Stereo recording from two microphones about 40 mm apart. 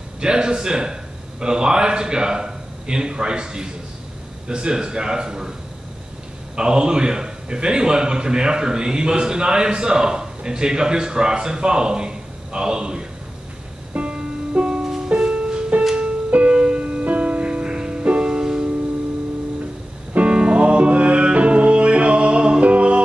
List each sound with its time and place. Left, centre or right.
0.2 s a man's voice: right
6.5 s a man's voice: right
13.9 s music: right
14.8 s music: centre
15.3 s music: right
20.2 s music: right